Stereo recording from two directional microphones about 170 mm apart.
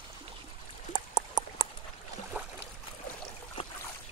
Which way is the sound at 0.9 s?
25° right (ahead or behind).